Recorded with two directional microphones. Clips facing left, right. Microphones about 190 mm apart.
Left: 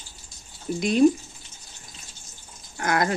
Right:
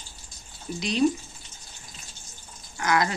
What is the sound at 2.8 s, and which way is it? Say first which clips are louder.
Speech: left 1 dB; 50° left (ahead or behind).